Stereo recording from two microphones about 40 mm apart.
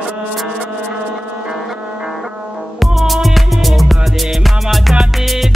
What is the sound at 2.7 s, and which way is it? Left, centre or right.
Music, centre.